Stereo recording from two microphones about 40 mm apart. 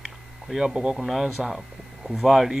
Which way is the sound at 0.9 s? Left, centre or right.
Centre.